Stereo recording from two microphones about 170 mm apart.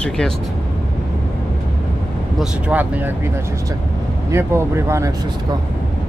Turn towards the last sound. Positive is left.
turn(degrees=-15)  # may be behind; listen again after turning